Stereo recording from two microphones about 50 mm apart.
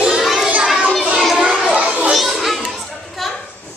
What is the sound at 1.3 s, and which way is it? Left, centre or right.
Children playing, centre.